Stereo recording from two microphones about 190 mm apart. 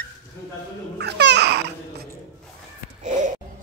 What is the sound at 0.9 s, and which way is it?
Babbling, 65° right (ahead or behind).